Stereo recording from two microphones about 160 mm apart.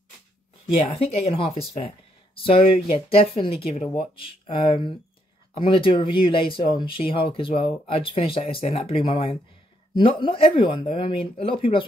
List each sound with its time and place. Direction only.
0.9 s speech: 35° left (ahead or behind)